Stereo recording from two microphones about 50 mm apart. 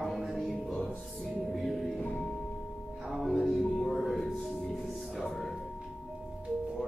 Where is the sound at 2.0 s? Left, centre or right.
Left.